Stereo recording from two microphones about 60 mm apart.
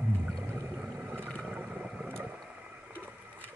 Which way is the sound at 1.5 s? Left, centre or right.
Centre.